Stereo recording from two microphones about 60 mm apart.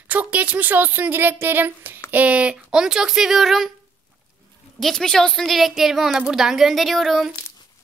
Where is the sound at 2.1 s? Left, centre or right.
Right.